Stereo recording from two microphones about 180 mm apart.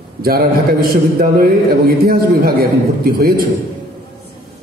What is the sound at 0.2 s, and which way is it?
A man's voice, 55° right (ahead or behind).